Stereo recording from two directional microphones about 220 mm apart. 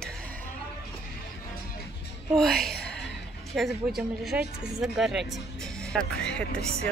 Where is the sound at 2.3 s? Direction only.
Centre (ahead or behind).